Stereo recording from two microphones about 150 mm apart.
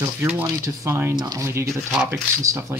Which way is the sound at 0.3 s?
15° right (ahead or behind).